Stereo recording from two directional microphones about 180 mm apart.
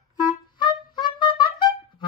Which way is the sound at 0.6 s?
25° left (ahead or behind).